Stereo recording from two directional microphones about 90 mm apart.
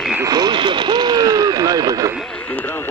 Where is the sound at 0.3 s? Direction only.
55° right (ahead or behind).